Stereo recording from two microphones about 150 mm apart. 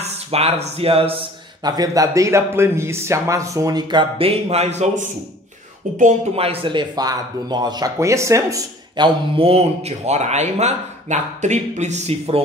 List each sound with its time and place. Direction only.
0.0 s speech: 45° right (ahead or behind)
1.6 s speech: 25° right (ahead or behind); by 5.1 s 50° right (ahead or behind)
6.3 s speech: 40° right (ahead or behind)